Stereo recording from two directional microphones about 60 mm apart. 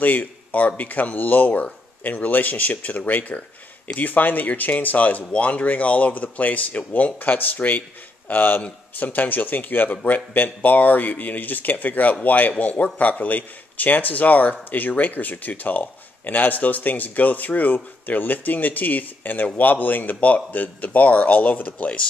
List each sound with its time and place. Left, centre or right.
0.0 s a man's voice: left